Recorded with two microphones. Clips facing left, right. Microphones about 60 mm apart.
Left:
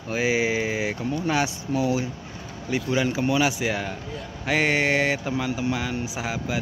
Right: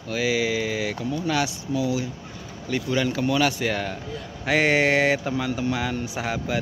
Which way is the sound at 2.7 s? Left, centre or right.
Centre.